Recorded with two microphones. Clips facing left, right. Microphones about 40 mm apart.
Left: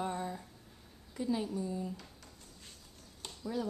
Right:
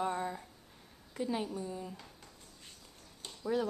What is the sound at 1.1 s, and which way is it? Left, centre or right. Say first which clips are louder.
Speech: left 1 dB; right.